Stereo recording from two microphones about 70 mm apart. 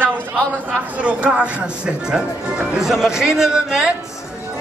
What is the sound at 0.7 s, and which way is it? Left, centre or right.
Speech, centre.